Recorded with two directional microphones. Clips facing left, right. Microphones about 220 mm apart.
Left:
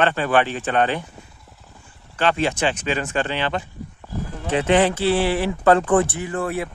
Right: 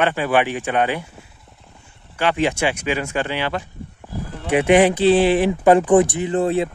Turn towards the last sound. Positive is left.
turn(degrees=-20)  # may be behind; listen again after turning